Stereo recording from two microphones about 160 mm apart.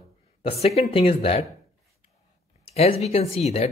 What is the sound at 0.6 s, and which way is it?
Speech, 40° left (ahead or behind).